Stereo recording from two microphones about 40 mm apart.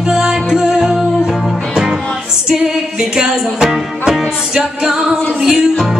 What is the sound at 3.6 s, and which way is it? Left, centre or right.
Music, centre.